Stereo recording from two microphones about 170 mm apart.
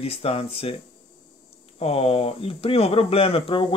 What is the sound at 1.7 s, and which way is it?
Speech, 35° left (ahead or behind).